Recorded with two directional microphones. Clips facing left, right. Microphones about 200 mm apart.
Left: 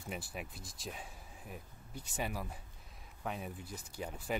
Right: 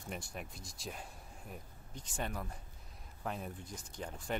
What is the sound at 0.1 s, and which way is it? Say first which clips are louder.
Speech: left 1 dB; 5° left (ahead or behind).